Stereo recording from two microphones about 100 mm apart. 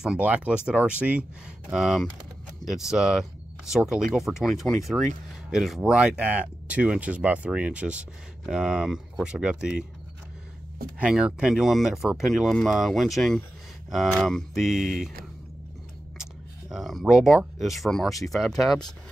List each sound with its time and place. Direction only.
0.0 s speech: 10° right (ahead or behind)
11.0 s speech: 10° right (ahead or behind)
16.2 s speech: 5° right (ahead or behind)